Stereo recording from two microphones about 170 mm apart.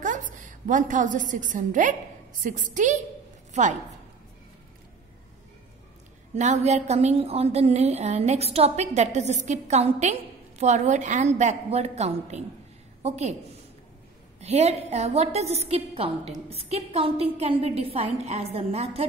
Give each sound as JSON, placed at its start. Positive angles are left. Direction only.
{"t": 0.0, "sound": "a woman's voice", "side_deg": -50}
{"t": 6.3, "sound": "a woman's voice", "side_deg": -45}
{"t": 14.4, "sound": "a woman's voice", "side_deg": -40}